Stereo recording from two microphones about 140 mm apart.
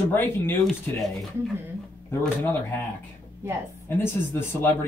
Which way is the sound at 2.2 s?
10° left (ahead or behind).